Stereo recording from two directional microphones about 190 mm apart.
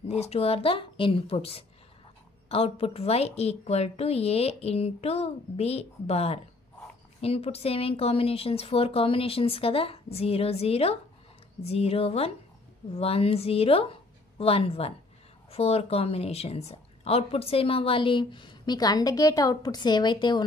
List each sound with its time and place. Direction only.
0.0 s a woman's voice: 35° left (ahead or behind)